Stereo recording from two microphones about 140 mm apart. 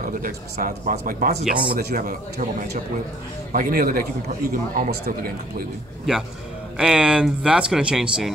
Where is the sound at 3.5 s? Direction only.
75° right (ahead or behind).